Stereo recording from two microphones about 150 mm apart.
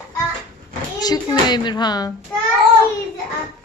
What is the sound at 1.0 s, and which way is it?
A child's voice, 25° left (ahead or behind).